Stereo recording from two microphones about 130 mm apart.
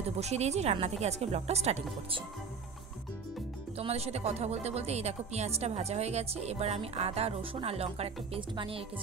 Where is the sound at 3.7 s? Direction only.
50° right (ahead or behind).